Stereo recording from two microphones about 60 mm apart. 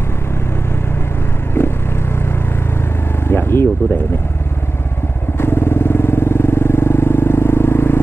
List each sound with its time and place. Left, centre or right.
1.6 s vehicle: left
3.3 s a sound: left
5.4 s vehicle: left